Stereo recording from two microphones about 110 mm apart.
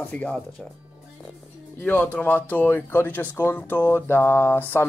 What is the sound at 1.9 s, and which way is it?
Speech, 15° left (ahead or behind).